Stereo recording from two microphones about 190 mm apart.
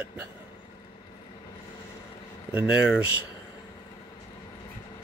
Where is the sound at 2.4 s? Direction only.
10° right (ahead or behind).